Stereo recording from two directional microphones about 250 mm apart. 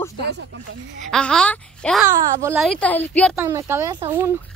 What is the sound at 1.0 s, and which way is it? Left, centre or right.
A child's voice, centre.